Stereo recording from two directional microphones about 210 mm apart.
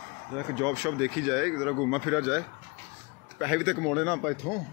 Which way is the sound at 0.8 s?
5° right (ahead or behind).